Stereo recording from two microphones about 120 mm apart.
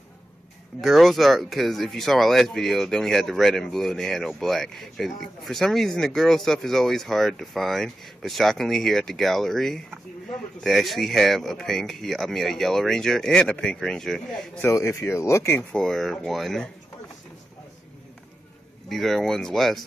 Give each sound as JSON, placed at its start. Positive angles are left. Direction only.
{"t": 0.7, "sound": "speech", "side_deg": 0}
{"t": 14.6, "sound": "speech", "side_deg": 25}
{"t": 15.7, "sound": "speech", "side_deg": 5}
{"t": 18.9, "sound": "speech", "side_deg": 0}